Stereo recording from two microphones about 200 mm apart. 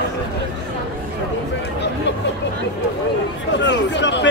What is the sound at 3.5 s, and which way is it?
Chatter, 65° left (ahead or behind).